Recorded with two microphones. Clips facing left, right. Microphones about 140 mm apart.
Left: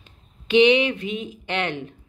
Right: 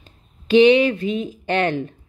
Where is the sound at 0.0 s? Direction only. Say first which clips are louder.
Right 2 dB; 40° right (ahead or behind).